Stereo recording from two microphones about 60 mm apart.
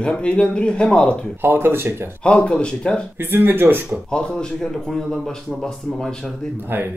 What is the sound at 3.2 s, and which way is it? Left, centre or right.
Speech, right.